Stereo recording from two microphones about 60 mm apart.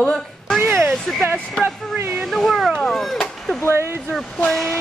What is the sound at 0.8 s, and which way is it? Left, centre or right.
Speech, centre.